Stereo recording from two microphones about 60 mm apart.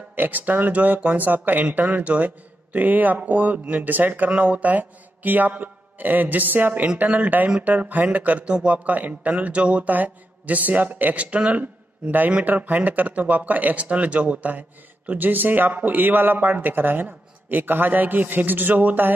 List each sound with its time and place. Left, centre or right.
0.1 s a man's voice: right